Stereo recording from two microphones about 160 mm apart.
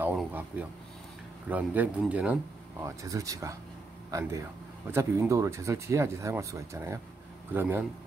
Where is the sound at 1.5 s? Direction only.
10° right (ahead or behind).